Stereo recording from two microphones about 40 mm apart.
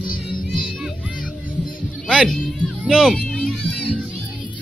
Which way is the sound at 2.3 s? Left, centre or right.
Centre.